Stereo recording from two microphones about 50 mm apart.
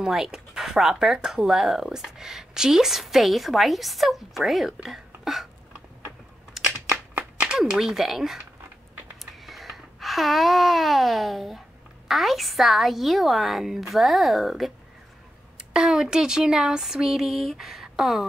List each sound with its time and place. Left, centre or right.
0.0 s speech: centre
6.6 s crushing: centre
7.5 s speech: centre
9.2 s a sound: centre
12.1 s speech: centre
15.7 s speech: centre